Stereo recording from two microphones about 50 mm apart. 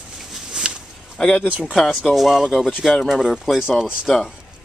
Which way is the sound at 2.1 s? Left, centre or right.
Centre.